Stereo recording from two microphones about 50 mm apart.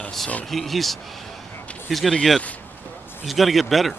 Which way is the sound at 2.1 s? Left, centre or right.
Centre.